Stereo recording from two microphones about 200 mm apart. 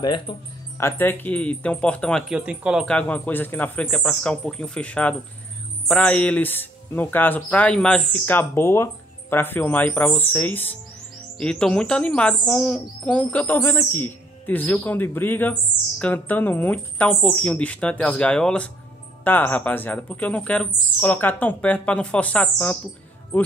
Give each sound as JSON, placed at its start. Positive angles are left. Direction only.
{"t": 0.0, "sound": "speech", "side_deg": 20}